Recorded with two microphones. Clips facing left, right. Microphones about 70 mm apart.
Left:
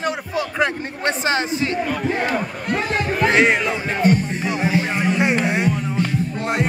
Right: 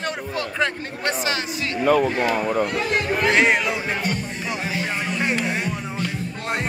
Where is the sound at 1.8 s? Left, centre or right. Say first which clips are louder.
Right 6 dB; right.